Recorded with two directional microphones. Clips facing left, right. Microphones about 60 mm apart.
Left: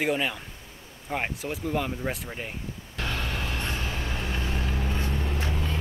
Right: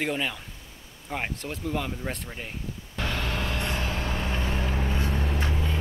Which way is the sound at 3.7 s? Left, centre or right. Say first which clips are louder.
Right 2 dB; right.